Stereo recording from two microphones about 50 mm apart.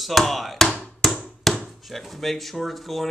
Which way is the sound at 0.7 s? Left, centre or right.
Centre.